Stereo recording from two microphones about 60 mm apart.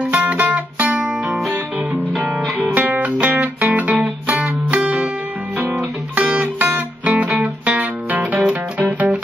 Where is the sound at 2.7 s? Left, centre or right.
Right.